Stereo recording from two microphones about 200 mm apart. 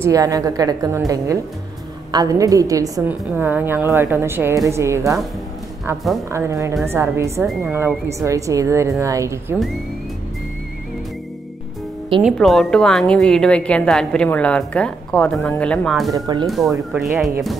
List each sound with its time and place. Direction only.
0.0 s a woman's voice: 15° right (ahead or behind)
12.2 s a woman's voice: centre (ahead or behind)
16.1 s speech: 20° right (ahead or behind)
16.4 s a woman's voice: centre (ahead or behind)